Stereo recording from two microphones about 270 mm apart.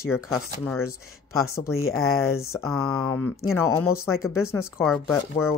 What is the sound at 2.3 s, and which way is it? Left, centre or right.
Speech, centre.